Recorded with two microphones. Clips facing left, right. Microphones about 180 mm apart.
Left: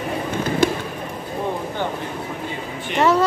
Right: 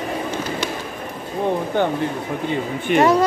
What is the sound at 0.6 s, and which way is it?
Fireworks, 50° left (ahead or behind).